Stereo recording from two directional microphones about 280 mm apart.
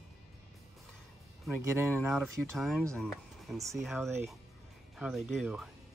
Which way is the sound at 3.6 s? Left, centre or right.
Centre.